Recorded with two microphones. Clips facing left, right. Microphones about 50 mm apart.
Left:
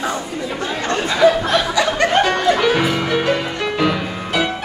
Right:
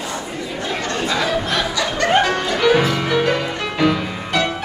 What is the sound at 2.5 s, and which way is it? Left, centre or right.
Music, centre.